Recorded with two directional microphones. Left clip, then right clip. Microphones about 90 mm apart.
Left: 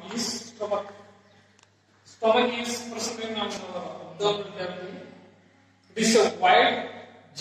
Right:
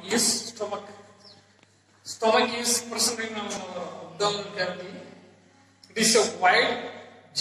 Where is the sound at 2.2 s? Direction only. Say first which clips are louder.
Even; 30° left (ahead or behind).